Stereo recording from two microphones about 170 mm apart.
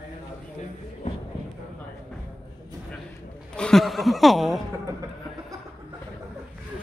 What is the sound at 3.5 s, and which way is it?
Chuckle, 5° left (ahead or behind).